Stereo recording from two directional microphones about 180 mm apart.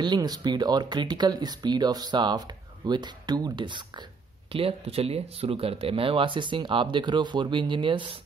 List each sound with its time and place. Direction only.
0.0 s speech: 25° right (ahead or behind)